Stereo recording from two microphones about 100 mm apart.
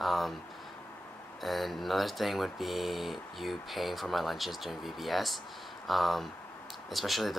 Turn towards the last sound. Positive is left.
turn(degrees=0)  # may be behind; listen again after turning